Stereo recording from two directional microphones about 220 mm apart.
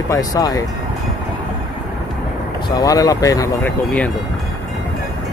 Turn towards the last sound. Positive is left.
turn(degrees=5)  # may be behind; listen again after turning